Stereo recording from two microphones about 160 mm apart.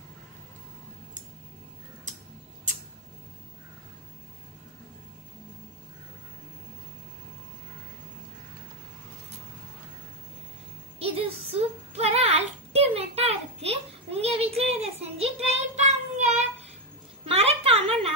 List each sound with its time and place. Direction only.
11.0 s music: 35° right (ahead or behind)
11.5 s child singing: 40° right (ahead or behind)
11.9 s a sound: 40° right (ahead or behind)